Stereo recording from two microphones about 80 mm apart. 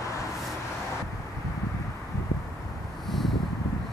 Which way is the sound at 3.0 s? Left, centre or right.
Centre.